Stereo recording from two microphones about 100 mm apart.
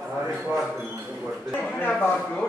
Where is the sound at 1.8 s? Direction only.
15° left (ahead or behind).